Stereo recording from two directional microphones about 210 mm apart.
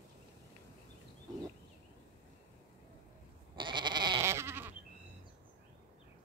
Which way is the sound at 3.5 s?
20° right (ahead or behind).